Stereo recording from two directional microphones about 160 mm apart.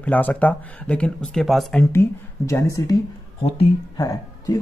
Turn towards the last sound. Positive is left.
turn(degrees=20)  # may be behind; listen again after turning